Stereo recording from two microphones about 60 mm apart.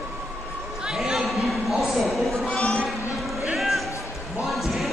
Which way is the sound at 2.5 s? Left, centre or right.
Centre.